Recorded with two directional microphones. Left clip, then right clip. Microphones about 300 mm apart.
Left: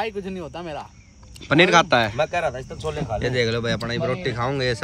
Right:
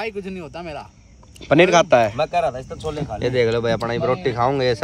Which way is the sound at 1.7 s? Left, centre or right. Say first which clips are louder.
Right 2 dB; centre.